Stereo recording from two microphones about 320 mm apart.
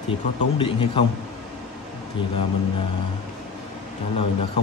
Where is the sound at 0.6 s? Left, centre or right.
Centre.